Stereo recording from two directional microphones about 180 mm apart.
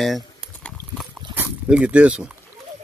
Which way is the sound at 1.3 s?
10° right (ahead or behind).